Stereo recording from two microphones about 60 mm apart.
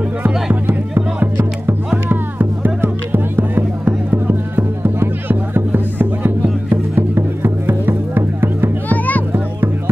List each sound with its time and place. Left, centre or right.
2.0 s music: right
8.8 s music: left